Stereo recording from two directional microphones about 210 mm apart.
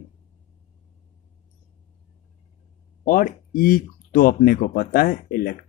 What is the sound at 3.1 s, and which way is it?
Speech, 40° left (ahead or behind).